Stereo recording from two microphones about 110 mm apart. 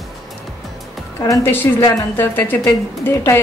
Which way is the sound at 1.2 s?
30° left (ahead or behind).